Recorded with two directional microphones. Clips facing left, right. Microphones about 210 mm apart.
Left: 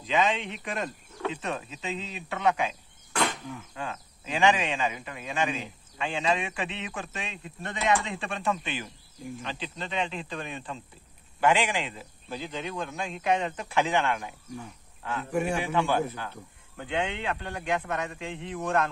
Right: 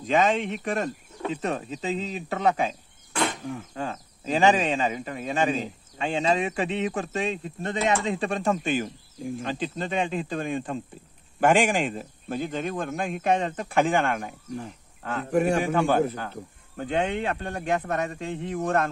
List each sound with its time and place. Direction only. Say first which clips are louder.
0.0 s a man's voice: right 4 dB; 45° right (ahead or behind)